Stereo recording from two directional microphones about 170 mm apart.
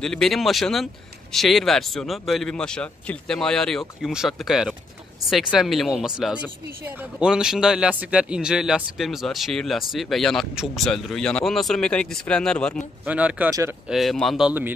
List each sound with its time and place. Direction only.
0.0 s speech: 5° left (ahead or behind)
13.0 s speech: 10° right (ahead or behind)